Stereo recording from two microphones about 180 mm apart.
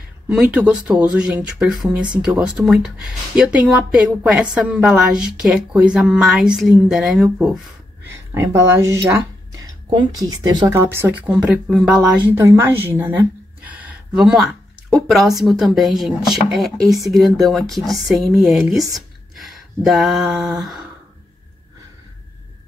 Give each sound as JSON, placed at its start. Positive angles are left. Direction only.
{"t": 0.3, "sound": "speech", "side_deg": -5}
{"t": 8.1, "sound": "speech", "side_deg": -15}
{"t": 18.9, "sound": "a sound", "side_deg": 0}